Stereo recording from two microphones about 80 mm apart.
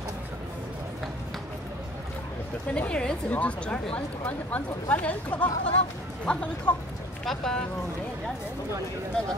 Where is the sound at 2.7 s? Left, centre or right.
Centre.